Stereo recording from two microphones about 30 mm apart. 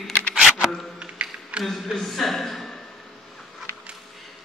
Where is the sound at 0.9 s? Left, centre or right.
Right.